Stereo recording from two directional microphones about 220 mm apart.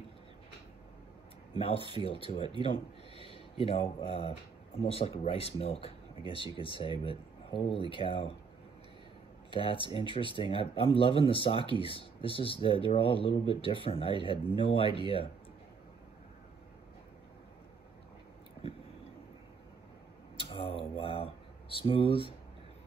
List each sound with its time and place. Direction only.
1.6 s speech: 25° left (ahead or behind)
2.6 s a sound: 25° left (ahead or behind)
4.0 s speech: 25° left (ahead or behind)
9.5 s speech: 25° left (ahead or behind)
20.3 s a sound: 25° left (ahead or behind)
21.8 s speech: 25° left (ahead or behind)